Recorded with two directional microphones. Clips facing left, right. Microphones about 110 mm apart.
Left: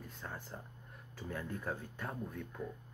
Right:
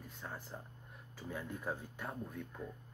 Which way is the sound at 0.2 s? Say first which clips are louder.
Even; 5° right (ahead or behind).